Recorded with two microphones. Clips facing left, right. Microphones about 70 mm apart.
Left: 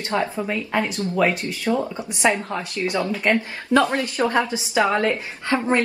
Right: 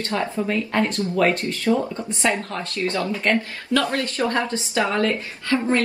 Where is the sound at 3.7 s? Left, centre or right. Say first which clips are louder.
Left 3 dB; left.